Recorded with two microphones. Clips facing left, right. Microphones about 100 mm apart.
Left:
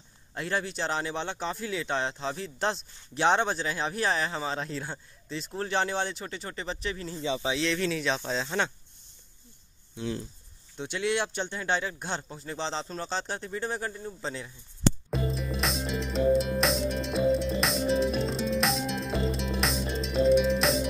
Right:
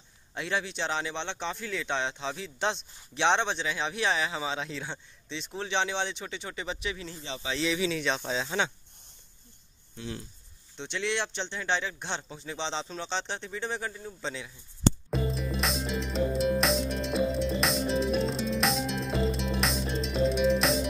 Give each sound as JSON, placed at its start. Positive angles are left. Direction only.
{"t": 0.3, "sound": "a man's voice", "side_deg": 0}
{"t": 10.0, "sound": "a sound", "side_deg": 15}
{"t": 10.8, "sound": "a man's voice", "side_deg": 5}
{"t": 15.0, "sound": "music", "side_deg": 0}